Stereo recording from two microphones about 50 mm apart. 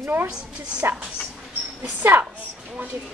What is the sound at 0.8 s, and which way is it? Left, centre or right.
Speech, right.